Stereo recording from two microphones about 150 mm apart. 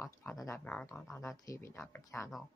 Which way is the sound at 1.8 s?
5° left (ahead or behind).